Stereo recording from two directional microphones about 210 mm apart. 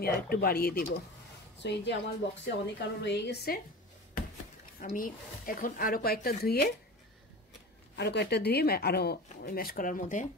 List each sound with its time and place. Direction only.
0.0 s a woman's voice: 45° left (ahead or behind)
4.7 s speech: 40° left (ahead or behind)
7.9 s speech: 55° left (ahead or behind)